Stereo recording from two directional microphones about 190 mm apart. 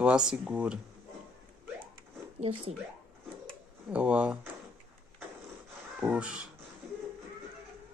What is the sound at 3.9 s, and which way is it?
Speech, 5° right (ahead or behind).